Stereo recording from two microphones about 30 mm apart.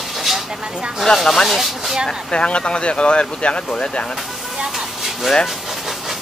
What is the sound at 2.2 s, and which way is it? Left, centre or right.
Speech, left.